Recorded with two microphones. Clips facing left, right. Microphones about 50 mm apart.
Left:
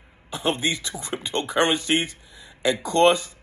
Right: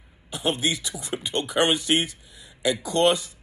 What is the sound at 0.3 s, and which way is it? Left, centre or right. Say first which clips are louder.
A man's voice: left 1 dB; left.